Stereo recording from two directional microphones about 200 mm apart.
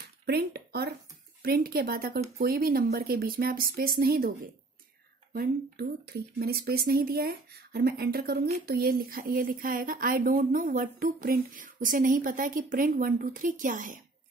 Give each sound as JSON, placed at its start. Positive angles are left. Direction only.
{"t": 0.3, "sound": "speech", "side_deg": -50}
{"t": 5.3, "sound": "speech", "side_deg": -50}